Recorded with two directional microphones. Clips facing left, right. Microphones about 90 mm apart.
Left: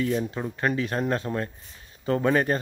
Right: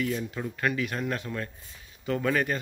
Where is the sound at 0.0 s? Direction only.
35° left (ahead or behind).